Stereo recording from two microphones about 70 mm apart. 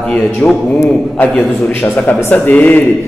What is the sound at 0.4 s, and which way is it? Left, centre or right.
Speech, left.